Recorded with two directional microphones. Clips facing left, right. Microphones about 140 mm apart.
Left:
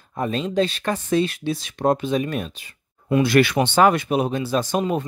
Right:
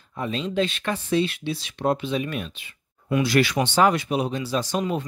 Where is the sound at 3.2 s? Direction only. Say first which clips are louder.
Left 3 dB; 55° left (ahead or behind).